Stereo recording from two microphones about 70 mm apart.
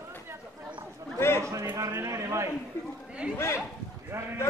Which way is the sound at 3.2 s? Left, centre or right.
Centre.